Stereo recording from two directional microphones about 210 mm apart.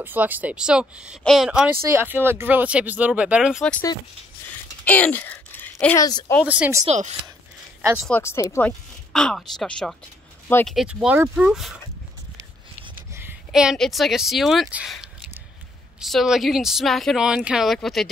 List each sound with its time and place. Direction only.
0.0 s speech: 10° right (ahead or behind)
4.8 s speech: 10° left (ahead or behind)
6.4 s speech: 5° right (ahead or behind)
6.9 s speech: 30° right (ahead or behind)
8.0 s speech: 10° left (ahead or behind)
12.9 s speech: 10° right (ahead or behind)